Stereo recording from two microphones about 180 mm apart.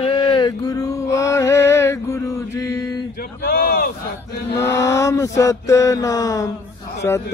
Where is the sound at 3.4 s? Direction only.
55° left (ahead or behind).